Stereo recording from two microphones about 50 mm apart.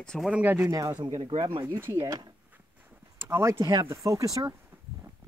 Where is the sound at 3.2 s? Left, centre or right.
Right.